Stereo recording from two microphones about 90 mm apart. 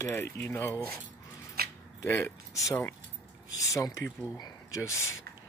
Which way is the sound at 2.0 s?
30° left (ahead or behind).